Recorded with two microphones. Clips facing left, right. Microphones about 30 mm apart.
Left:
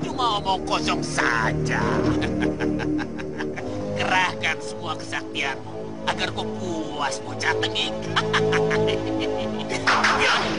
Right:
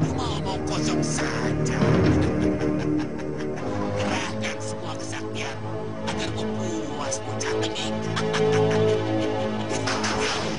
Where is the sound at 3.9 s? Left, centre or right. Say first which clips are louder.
Left 5 dB; left.